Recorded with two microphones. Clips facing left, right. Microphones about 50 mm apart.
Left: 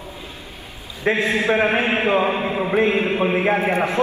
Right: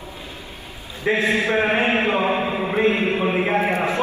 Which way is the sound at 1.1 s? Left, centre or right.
Left.